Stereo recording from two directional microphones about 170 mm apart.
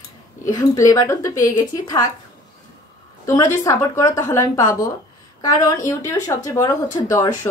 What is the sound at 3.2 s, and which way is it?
A woman's voice, 20° left (ahead or behind).